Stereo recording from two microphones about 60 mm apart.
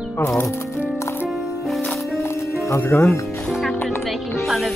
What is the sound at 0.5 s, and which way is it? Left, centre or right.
Music, left.